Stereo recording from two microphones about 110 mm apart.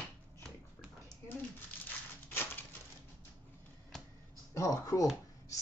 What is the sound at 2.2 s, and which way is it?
Typewriter, 20° left (ahead or behind).